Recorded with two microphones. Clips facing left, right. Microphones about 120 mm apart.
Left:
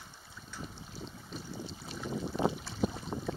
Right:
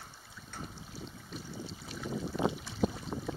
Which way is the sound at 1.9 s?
30° left (ahead or behind).